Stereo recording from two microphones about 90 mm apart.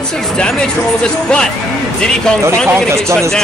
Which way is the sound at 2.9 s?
30° right (ahead or behind).